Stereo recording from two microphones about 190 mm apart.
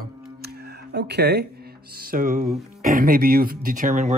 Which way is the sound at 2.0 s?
50° right (ahead or behind).